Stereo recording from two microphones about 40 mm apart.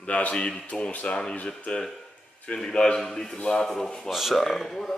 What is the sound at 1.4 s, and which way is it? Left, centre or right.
Speech, left.